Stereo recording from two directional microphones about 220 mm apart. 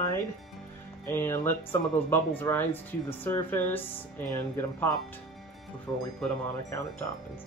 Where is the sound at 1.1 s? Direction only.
10° left (ahead or behind).